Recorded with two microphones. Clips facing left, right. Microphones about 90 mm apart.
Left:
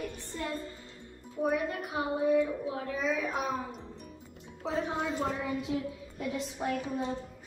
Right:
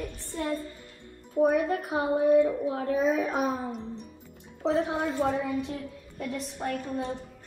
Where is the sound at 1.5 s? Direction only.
40° right (ahead or behind).